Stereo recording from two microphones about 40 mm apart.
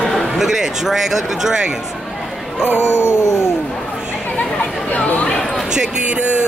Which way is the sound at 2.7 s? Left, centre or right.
Left.